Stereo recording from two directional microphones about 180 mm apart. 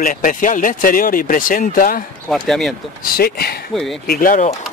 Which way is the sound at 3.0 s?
60° left (ahead or behind).